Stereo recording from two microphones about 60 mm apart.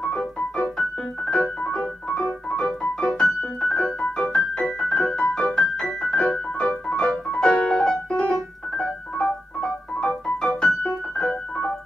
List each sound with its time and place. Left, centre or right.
0.7 s piano: centre
2.5 s music: centre
3.7 s music: left
4.3 s keyboard: centre
5.6 s music: centre
6.7 s piano: left
10.6 s keyboard: centre